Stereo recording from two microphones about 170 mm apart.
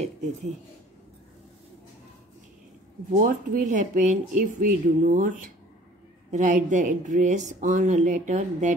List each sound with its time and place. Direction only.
3.1 s speech: 50° right (ahead or behind)